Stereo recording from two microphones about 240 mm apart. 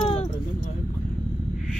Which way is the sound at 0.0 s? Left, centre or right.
Left.